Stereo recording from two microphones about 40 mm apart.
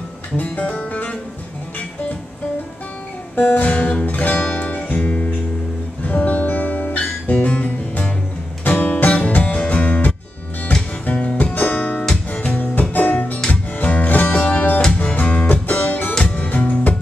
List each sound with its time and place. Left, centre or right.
0.4 s music: left
3.3 s music: left
4.5 s music: left
6.4 s guitar: left
8.6 s music: left
11.5 s guitar: left
12.7 s music: left